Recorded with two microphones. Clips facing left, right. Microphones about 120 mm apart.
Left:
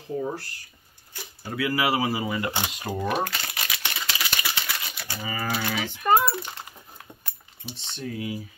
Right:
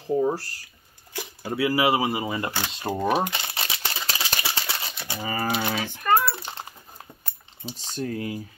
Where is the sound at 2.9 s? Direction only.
35° right (ahead or behind).